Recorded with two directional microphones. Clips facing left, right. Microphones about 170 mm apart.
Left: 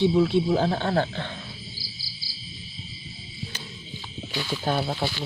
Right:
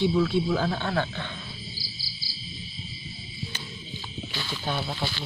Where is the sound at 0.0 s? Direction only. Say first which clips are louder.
Left 3 dB; 25° left (ahead or behind).